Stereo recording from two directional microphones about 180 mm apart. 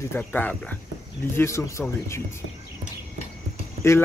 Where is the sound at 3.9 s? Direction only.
15° left (ahead or behind).